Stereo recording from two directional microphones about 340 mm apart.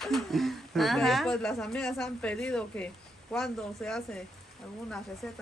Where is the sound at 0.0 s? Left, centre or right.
Centre.